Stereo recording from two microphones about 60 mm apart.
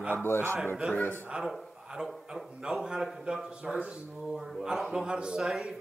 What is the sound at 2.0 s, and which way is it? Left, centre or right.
Speech, centre.